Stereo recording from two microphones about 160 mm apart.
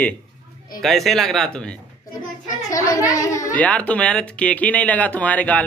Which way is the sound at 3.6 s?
10° left (ahead or behind).